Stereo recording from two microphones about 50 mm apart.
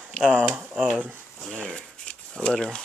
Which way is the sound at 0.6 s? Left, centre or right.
Right.